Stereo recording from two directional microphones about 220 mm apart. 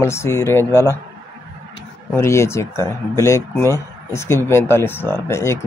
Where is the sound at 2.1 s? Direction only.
10° left (ahead or behind).